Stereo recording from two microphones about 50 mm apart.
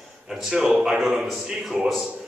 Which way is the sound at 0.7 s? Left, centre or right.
Centre.